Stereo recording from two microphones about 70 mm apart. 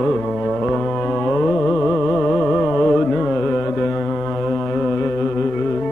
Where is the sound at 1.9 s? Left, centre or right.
Centre.